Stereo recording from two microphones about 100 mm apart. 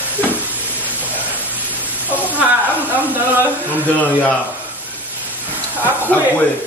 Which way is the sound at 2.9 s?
15° right (ahead or behind).